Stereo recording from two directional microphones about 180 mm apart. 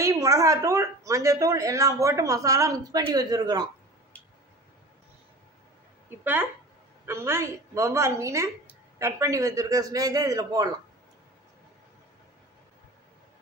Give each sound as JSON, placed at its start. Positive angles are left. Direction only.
{"t": 0.0, "sound": "speech", "side_deg": -15}
{"t": 7.1, "sound": "a man's voice", "side_deg": -15}